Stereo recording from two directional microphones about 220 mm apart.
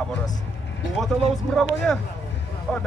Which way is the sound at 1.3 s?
Centre (ahead or behind).